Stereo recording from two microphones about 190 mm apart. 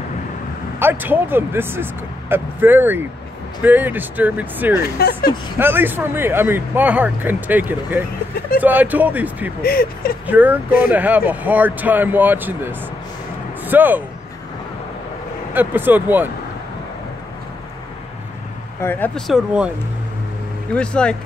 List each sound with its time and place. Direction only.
0.7 s speech: 10° right (ahead or behind)
4.9 s speech: 55° left (ahead or behind)
5.6 s speech: 10° right (ahead or behind)
9.6 s speech: 50° left (ahead or behind)
10.2 s speech: 10° right (ahead or behind)
15.5 s speech: 10° right (ahead or behind)
18.8 s speech: 10° left (ahead or behind)
20.7 s speech: 5° left (ahead or behind)